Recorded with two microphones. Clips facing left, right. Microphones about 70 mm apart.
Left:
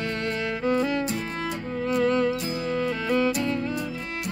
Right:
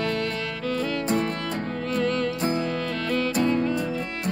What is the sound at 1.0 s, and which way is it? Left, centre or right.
Music, right.